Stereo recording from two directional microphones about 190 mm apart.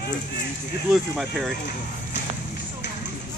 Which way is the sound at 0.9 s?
Centre (ahead or behind).